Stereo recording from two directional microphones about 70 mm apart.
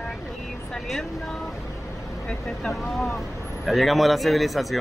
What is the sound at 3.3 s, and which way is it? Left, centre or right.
Vehicle, left.